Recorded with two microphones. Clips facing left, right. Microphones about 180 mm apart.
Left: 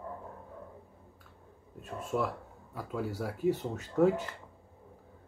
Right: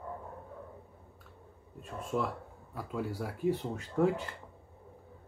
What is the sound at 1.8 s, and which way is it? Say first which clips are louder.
Speech: left 1 dB; 5° left (ahead or behind).